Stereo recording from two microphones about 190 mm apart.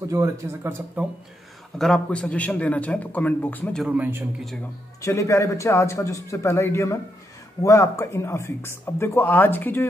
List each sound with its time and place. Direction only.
0.1 s speech: 15° right (ahead or behind)
1.8 s speech: 5° left (ahead or behind)
3.8 s speech: 10° right (ahead or behind)
5.0 s speech: 15° left (ahead or behind)